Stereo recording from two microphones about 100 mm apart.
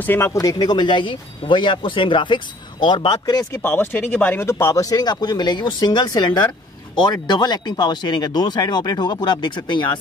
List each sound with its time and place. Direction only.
0.0 s speech: 25° left (ahead or behind); by 3.6 s 40° left (ahead or behind)
3.6 s speech: 20° left (ahead or behind); by 9.9 s 50° left (ahead or behind)